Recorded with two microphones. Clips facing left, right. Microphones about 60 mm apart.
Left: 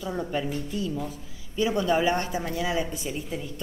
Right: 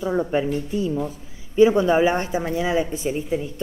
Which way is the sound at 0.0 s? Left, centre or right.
Right.